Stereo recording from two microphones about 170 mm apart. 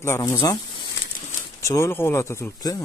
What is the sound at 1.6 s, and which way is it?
Speech, 15° left (ahead or behind).